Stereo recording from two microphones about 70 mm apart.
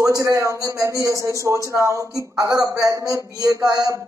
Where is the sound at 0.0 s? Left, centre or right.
Right.